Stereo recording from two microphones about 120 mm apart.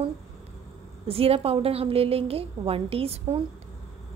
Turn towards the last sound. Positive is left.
turn(degrees=-55)  # may be behind; listen again after turning